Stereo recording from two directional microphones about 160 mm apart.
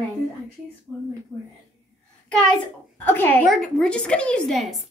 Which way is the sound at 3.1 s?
10° left (ahead or behind).